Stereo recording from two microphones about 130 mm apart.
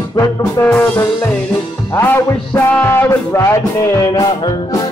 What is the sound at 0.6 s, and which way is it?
Music, 15° left (ahead or behind).